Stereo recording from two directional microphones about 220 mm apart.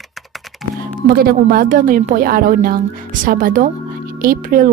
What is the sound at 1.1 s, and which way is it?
A woman's voice, 40° right (ahead or behind).